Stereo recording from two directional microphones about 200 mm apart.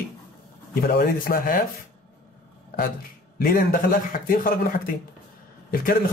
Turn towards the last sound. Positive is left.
turn(degrees=45)  # may be behind; listen again after turning